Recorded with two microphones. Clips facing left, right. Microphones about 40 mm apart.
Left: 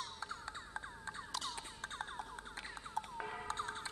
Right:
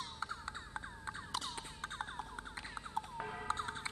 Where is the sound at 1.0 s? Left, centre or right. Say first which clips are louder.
Right 2 dB; right.